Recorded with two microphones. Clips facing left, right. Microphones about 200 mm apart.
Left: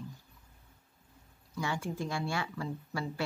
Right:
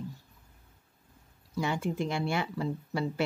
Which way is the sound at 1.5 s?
20° right (ahead or behind).